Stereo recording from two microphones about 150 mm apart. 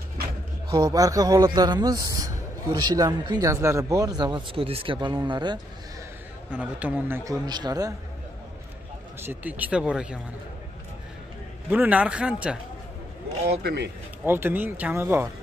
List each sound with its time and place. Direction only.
0.7 s a man's voice: 30° right (ahead or behind)
6.5 s speech: 10° right (ahead or behind)
7.4 s a man's voice: 30° right (ahead or behind)
9.2 s speech: 15° right (ahead or behind)
11.7 s speech: 10° right (ahead or behind)
13.5 s speech: 90° right
14.2 s speech: 15° right (ahead or behind)